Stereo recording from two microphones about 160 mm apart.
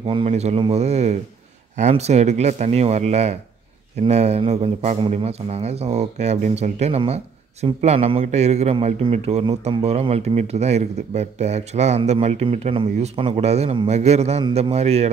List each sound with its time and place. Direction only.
0.0 s a man's voice: 35° right (ahead or behind)